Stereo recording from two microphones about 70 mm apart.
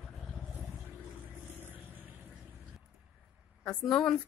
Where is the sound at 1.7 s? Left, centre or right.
Right.